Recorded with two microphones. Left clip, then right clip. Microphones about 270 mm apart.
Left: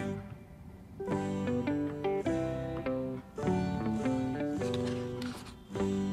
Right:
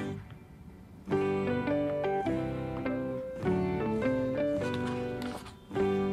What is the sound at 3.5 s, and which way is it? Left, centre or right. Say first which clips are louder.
Music: right 3 dB; centre.